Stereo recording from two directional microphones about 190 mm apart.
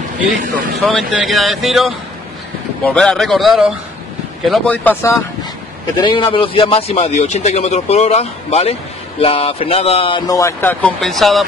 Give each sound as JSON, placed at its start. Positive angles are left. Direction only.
{"t": 0.8, "sound": "speech", "side_deg": 0}
{"t": 5.9, "sound": "a man's voice", "side_deg": 25}